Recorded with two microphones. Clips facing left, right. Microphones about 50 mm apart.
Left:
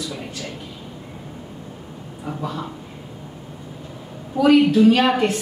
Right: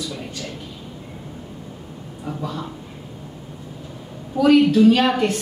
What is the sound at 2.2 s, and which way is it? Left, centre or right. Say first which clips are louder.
Speech: even; centre.